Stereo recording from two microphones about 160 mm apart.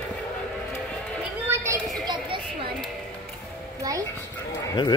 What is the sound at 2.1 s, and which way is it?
Chatter, 30° right (ahead or behind).